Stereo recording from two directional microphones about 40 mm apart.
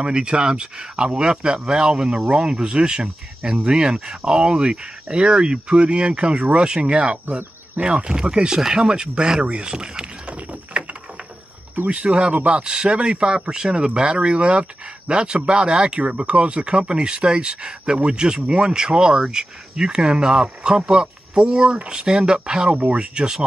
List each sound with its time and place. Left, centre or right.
0.0 s speech: right
2.6 s speech: right
10.7 s a sound: right
11.9 s speech: right